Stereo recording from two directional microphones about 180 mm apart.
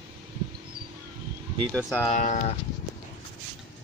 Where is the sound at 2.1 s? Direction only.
45° left (ahead or behind).